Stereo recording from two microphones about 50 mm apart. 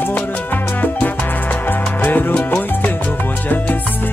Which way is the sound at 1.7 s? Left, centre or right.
Left.